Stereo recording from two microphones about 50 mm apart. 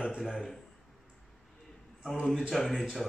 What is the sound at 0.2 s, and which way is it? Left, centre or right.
Speech, centre.